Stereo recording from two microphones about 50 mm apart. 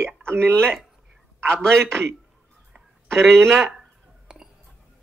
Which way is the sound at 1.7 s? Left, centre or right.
Right.